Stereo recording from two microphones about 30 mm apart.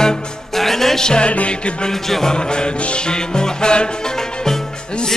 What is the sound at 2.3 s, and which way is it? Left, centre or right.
Music, left.